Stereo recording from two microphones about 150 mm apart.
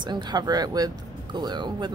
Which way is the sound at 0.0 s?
30° right (ahead or behind).